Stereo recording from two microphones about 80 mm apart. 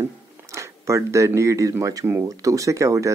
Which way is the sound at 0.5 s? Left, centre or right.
Right.